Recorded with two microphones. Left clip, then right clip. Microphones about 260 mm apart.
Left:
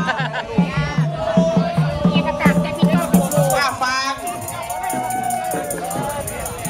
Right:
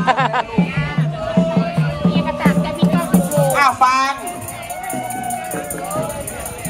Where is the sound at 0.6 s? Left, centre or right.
Left.